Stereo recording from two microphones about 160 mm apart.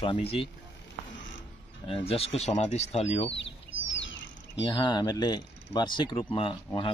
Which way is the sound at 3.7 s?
35° right (ahead or behind).